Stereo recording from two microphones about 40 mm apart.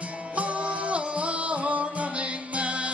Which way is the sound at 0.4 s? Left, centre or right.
Right.